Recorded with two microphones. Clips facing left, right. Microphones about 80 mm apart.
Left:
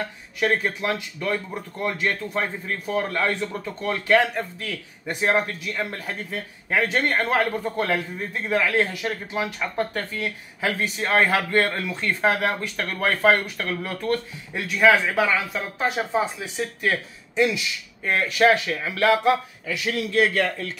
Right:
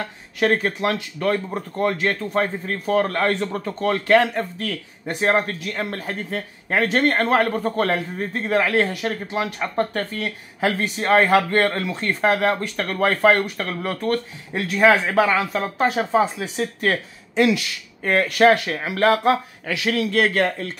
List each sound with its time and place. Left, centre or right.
0.4 s speech: right
5.6 s speech: right
14.8 s speech: right
15.1 s speech: right
17.4 s speech: right
18.0 s speech: right
19.6 s speech: right